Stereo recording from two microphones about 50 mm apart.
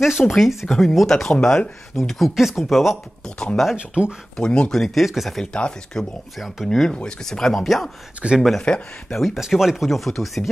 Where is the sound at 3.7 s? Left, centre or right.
Right.